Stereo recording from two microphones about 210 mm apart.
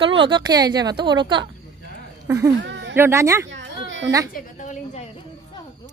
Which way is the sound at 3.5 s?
65° right (ahead or behind).